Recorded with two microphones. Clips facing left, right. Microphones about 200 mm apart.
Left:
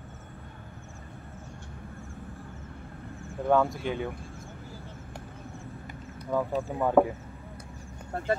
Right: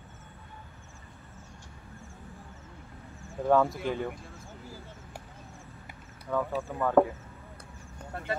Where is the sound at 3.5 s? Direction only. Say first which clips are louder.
Even; centre (ahead or behind).